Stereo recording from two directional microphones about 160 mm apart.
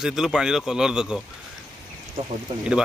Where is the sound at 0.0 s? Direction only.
5° right (ahead or behind).